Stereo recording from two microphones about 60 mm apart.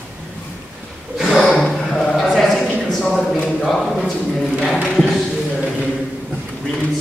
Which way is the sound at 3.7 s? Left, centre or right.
Centre.